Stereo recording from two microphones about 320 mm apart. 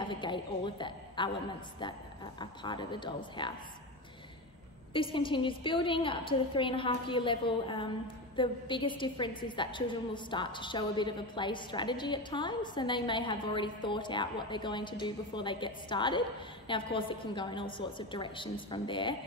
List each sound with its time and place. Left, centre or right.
0.0 s a woman's voice: centre
2.6 s a woman's voice: centre
4.9 s a woman's voice: centre